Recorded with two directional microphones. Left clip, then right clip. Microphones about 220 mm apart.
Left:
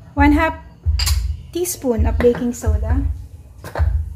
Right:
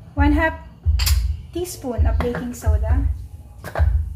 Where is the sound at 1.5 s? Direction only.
50° left (ahead or behind).